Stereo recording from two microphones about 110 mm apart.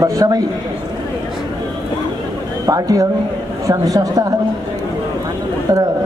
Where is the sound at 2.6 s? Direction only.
30° right (ahead or behind).